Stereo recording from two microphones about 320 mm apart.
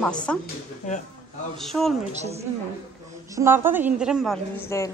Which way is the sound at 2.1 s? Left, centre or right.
Right.